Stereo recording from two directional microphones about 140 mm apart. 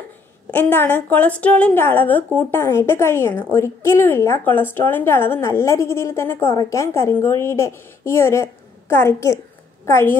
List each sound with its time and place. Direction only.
0.5 s a woman's voice: 15° left (ahead or behind)